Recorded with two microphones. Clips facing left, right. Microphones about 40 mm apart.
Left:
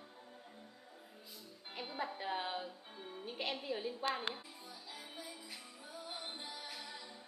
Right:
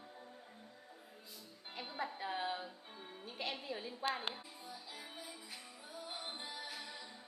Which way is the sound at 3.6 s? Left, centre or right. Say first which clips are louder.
Left 4 dB; centre.